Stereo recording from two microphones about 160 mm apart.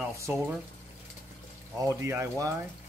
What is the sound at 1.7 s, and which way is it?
Speech, 20° right (ahead or behind).